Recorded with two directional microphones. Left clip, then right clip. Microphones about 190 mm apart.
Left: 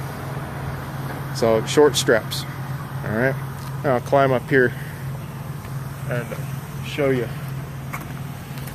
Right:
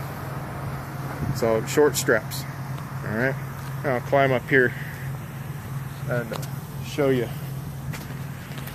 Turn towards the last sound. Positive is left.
turn(degrees=-15)  # may be behind; listen again after turning